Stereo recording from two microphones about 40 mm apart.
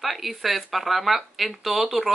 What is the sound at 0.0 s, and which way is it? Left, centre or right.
Speech, centre.